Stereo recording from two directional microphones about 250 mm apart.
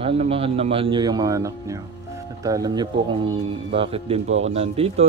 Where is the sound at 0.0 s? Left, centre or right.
Right.